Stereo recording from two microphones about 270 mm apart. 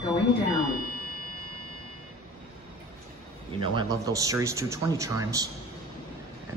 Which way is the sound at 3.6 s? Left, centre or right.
Centre.